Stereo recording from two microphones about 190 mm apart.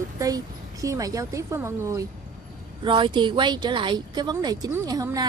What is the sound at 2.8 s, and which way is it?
A woman's voice, 25° right (ahead or behind).